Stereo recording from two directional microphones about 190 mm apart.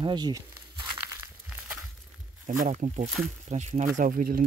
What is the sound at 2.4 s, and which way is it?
Speech, 40° right (ahead or behind).